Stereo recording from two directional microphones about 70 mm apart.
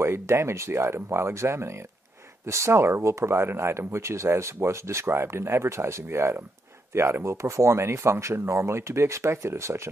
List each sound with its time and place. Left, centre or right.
0.0 s speech: right